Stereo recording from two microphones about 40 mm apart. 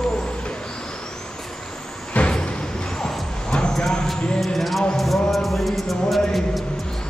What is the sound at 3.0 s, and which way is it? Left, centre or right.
Vehicle, left.